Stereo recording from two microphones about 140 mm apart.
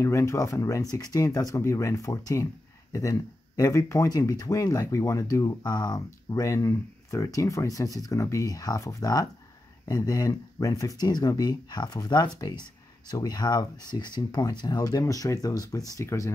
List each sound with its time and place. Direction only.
0.0 s speech: 20° left (ahead or behind)